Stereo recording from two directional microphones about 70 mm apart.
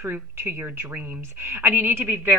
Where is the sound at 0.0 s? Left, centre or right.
Right.